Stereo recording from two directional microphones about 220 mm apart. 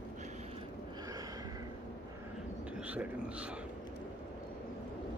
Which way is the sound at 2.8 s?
5° right (ahead or behind).